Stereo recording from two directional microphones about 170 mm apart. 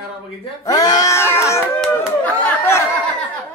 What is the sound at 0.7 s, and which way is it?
Wail, 20° left (ahead or behind).